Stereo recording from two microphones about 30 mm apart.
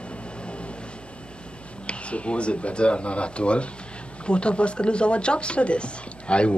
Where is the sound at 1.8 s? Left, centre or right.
Left.